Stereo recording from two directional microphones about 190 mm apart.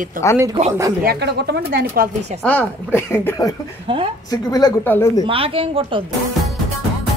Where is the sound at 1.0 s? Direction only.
60° right (ahead or behind).